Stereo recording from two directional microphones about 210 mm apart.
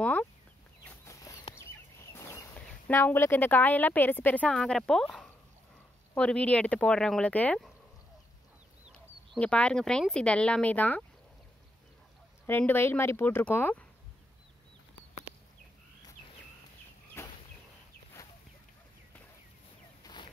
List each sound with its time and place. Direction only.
0.0 s speech: 5° left (ahead or behind)
0.8 s chicken: 15° left (ahead or behind)
2.1 s a sound: 15° left (ahead or behind)
2.6 s a woman's voice: 10° left (ahead or behind)
8.8 s speech: 5° left (ahead or behind)
12.4 s a woman's voice: 10° left (ahead or behind)
20.0 s a sound: 20° left (ahead or behind)